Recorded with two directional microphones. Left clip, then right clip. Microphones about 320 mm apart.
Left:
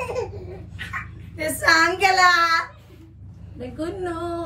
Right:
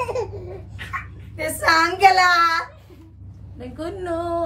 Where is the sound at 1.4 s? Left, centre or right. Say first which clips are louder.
Even; centre.